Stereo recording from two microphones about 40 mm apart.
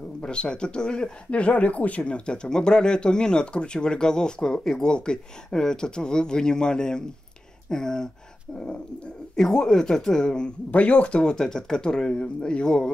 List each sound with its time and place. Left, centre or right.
0.2 s speech: left
9.3 s speech: centre
10.7 s speech: left
11.3 s speech: centre